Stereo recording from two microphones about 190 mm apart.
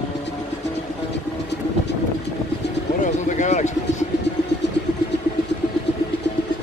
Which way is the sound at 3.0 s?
40° left (ahead or behind).